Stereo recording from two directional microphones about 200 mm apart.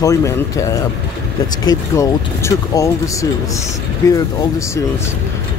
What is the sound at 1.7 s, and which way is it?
Speech, 15° left (ahead or behind).